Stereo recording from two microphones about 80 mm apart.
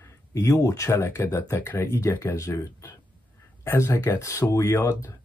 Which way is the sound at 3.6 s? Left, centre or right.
Left.